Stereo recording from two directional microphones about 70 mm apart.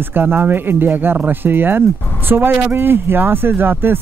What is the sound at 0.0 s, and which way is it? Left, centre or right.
Speech, right.